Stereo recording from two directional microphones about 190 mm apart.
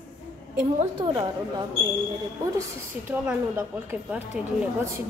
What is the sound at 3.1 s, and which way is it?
A woman's voice, 5° right (ahead or behind).